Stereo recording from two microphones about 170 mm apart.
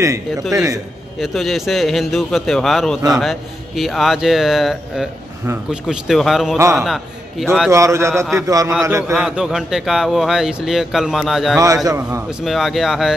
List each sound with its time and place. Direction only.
0.0 s a man's voice: 15° right (ahead or behind)
1.2 s a man's voice: centre (ahead or behind)
7.7 s a man's voice: 15° right (ahead or behind)
9.1 s speech: 5° right (ahead or behind)
11.5 s a man's voice: 20° right (ahead or behind)
12.3 s speech: centre (ahead or behind)